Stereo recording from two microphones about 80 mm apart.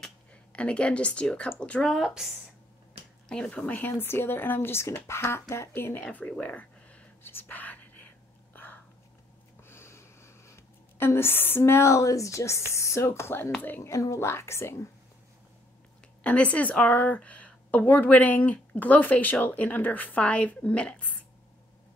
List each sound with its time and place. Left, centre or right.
0.0 s speech: centre
2.0 s a woman's voice: centre
3.3 s a woman's voice: centre; by 5.9 s left
6.4 s a sound: centre
7.2 s whispering: left
9.7 s a woman's voice: left
16.2 s a woman's voice: centre